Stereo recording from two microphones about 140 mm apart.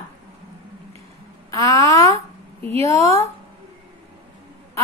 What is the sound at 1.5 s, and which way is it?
A woman's voice, 25° left (ahead or behind).